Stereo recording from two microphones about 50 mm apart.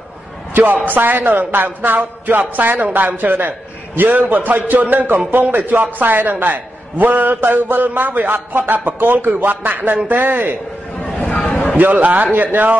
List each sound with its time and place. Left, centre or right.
0.8 s a man's voice: right
11.4 s a sound: centre
11.7 s a man's voice: right